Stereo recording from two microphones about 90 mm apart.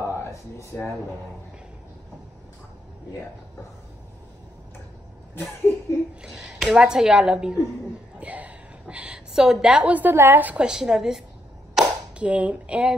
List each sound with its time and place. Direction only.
0.0 s a sound: 30° left (ahead or behind)
5.7 s laughter: 20° left (ahead or behind)
6.2 s a woman's voice: 5° right (ahead or behind)
11.7 s clapping: 15° right (ahead or behind)